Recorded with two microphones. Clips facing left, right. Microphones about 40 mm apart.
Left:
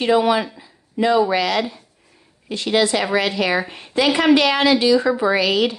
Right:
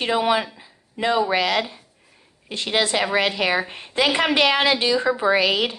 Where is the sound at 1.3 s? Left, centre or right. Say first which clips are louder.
Left 2 dB; right.